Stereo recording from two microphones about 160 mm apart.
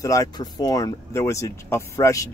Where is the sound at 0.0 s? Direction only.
20° left (ahead or behind).